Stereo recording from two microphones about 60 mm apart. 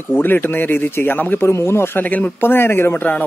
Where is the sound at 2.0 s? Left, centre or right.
Left.